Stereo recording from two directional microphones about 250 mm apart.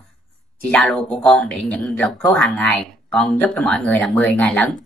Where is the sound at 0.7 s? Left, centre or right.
Centre.